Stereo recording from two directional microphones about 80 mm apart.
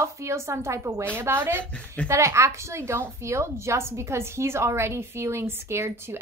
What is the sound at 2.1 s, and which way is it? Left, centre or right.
A woman's voice, right.